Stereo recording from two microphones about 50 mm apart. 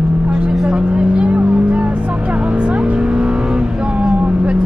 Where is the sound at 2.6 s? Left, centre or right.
Centre.